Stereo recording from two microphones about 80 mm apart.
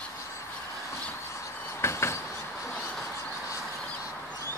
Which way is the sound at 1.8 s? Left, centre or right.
Left.